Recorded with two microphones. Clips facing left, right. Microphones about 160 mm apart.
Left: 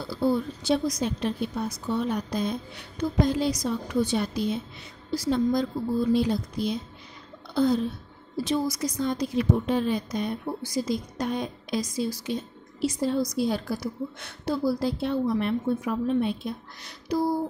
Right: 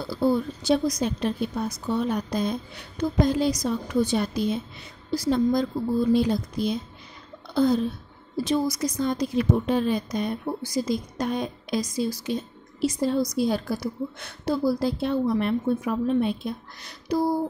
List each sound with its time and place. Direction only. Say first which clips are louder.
0.1 s a woman's voice: right 2 dB; 40° right (ahead or behind)